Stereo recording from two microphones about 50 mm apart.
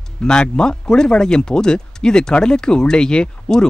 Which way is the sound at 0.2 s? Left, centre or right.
Centre.